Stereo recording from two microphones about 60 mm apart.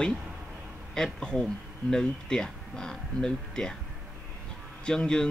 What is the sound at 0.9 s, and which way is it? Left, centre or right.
Speech, centre.